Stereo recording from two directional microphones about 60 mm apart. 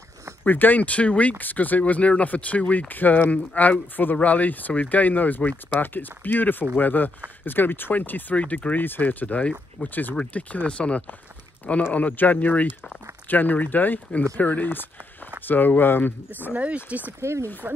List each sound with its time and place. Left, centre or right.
0.4 s speech: left
16.5 s speech: right
17.2 s speech: right